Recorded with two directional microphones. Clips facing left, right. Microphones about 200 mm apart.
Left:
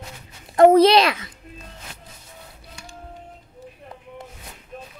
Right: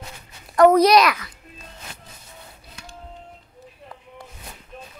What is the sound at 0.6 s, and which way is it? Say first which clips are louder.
Speech: left 1 dB; 25° left (ahead or behind).